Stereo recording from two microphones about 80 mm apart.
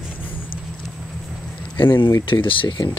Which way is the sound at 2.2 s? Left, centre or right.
Left.